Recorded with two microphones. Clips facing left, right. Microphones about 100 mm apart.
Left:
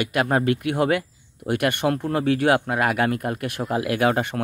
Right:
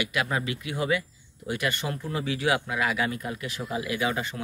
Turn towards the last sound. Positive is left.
turn(degrees=60)  # may be behind; listen again after turning